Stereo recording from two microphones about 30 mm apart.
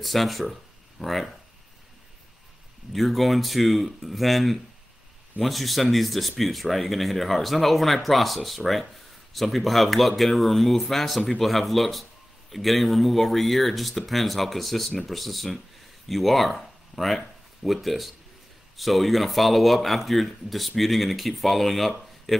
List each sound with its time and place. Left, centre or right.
0.0 s speech: centre
2.9 s speech: centre